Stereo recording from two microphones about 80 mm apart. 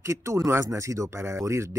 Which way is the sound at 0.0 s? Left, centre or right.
Right.